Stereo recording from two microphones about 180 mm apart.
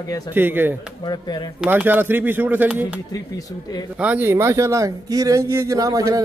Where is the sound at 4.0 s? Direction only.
10° right (ahead or behind).